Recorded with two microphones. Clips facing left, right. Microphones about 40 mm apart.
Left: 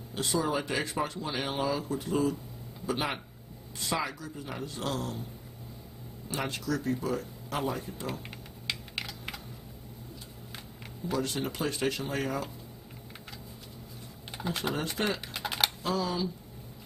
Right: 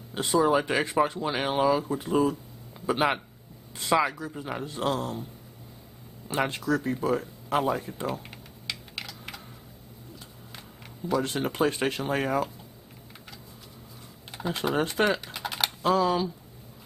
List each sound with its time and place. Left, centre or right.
0.1 s speech: right
6.2 s speech: right
8.2 s typing: centre
11.1 s speech: right
14.3 s typing: centre
15.8 s speech: right